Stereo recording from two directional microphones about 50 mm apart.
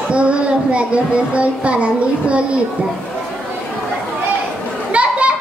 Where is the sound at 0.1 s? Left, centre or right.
Right.